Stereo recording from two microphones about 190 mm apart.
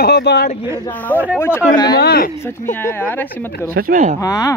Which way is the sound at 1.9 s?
55° left (ahead or behind).